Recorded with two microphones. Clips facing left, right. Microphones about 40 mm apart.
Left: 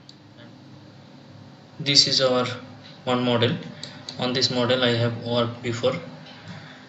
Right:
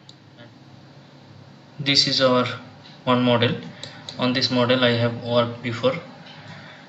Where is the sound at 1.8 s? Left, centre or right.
Centre.